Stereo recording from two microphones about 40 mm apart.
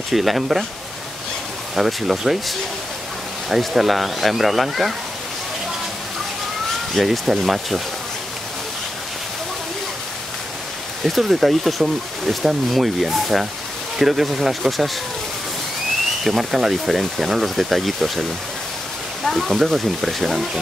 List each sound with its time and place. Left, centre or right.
0.1 s speech: centre
1.8 s speech: centre
2.3 s speech: centre
3.4 s speech: centre
7.0 s speech: centre
11.1 s speech: centre
16.3 s speech: centre
19.2 s speech: centre